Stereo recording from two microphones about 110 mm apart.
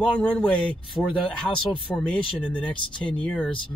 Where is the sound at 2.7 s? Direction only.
50° left (ahead or behind).